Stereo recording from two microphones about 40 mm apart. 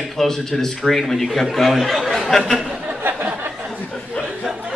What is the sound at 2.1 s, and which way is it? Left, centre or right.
Speech, centre.